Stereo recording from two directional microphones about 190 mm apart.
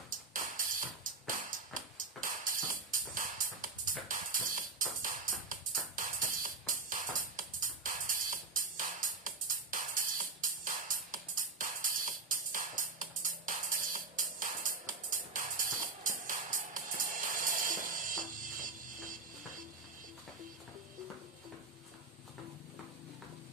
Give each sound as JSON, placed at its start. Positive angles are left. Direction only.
{"t": 0.1, "sound": "music", "side_deg": -45}